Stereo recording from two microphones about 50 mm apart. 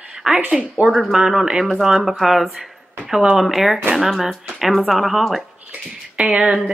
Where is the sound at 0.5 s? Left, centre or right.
Right.